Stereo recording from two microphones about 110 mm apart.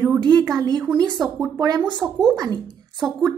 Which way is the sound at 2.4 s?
40° right (ahead or behind).